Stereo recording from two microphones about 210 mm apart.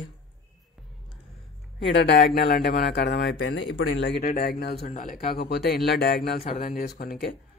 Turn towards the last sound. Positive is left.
turn(degrees=50)  # may be behind; listen again after turning